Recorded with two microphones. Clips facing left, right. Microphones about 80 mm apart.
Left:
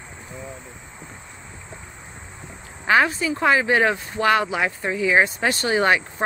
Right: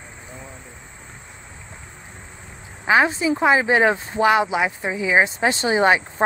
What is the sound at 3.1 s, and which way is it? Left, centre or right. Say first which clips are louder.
Speech: right 2 dB; centre.